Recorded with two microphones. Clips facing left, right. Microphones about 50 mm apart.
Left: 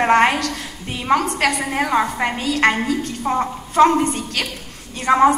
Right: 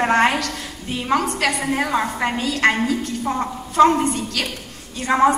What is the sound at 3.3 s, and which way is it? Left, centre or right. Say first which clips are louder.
Speech: left 4 dB; left.